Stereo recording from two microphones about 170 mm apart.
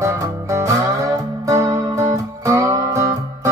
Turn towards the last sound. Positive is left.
turn(degrees=-15)  # may be behind; listen again after turning